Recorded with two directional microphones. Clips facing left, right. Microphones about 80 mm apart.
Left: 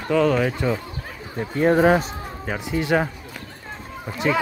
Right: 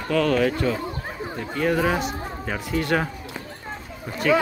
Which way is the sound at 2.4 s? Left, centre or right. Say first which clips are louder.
Left 1 dB; centre.